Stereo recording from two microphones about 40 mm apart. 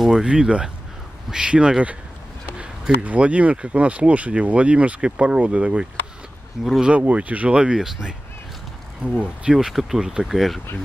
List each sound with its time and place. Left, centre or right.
0.1 s speech: centre
2.5 s a sound: right
3.0 s speech: right
6.6 s speech: centre
6.9 s speech: right
9.2 s speech: right
9.7 s speech: centre